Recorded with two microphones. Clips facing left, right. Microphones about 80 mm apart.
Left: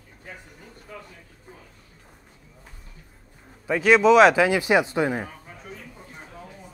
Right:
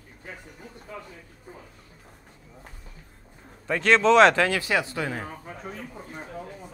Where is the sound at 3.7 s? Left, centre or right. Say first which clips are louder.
Left 3 dB; centre.